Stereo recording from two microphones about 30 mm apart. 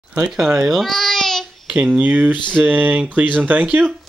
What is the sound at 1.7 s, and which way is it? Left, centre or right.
Speech, right.